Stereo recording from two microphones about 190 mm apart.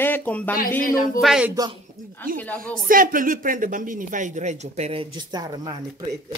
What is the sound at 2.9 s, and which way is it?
Speech, 45° right (ahead or behind).